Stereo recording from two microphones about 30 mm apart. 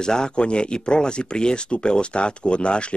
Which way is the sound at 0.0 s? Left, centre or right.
Left.